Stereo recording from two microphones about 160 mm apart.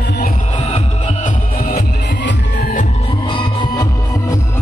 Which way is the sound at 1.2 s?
70° left (ahead or behind).